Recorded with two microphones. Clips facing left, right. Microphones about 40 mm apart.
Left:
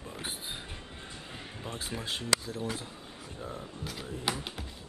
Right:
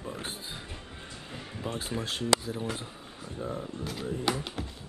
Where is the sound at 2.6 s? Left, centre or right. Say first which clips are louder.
Right 1 dB; right.